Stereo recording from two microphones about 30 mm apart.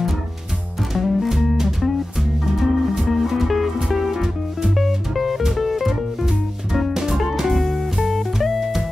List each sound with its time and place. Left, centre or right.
0.9 s music: centre
2.5 s music: centre
5.9 s music: centre